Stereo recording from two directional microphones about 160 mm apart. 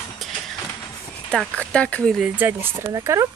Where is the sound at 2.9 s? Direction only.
20° right (ahead or behind).